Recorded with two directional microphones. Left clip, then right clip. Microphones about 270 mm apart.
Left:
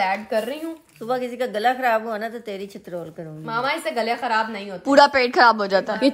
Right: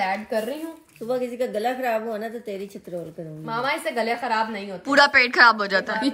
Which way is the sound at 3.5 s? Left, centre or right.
Centre.